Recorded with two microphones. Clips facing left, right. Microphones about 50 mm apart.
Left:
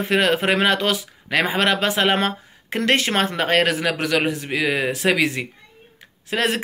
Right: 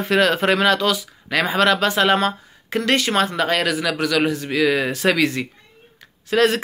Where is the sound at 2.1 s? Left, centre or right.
Left.